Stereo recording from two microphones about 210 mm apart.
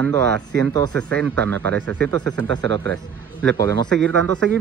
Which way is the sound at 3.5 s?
15° left (ahead or behind).